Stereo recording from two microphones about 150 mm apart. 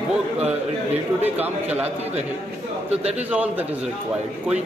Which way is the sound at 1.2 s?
10° right (ahead or behind).